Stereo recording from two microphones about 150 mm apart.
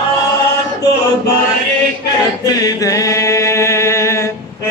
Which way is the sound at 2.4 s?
25° left (ahead or behind).